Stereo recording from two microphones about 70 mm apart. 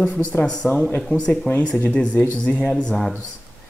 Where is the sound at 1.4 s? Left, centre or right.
Left.